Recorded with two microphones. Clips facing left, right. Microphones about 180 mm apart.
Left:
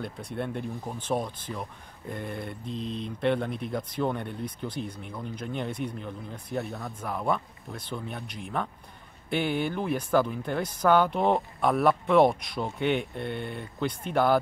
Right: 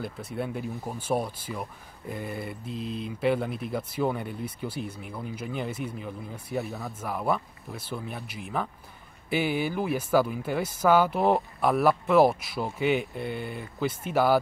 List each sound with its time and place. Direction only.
0.0 s speech: 5° right (ahead or behind)